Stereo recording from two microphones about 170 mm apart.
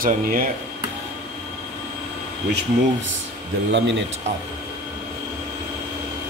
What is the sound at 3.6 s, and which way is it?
Speech, 90° right.